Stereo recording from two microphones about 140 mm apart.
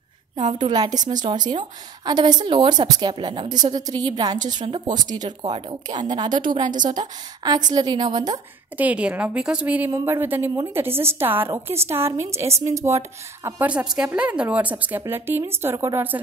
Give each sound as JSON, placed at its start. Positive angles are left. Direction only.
{"t": 0.6, "sound": "speech", "side_deg": -30}
{"t": 8.7, "sound": "a woman's voice", "side_deg": -10}
{"t": 13.7, "sound": "a woman's voice", "side_deg": -5}